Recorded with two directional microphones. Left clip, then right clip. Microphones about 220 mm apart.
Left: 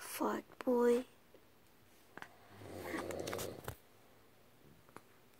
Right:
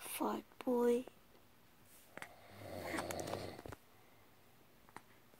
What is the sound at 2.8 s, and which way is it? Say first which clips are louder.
Vehicle: even; 20° right (ahead or behind).